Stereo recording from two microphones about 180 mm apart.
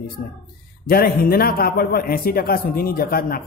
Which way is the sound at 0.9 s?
55° left (ahead or behind).